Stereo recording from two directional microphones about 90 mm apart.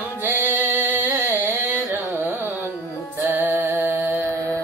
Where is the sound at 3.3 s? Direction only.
20° right (ahead or behind).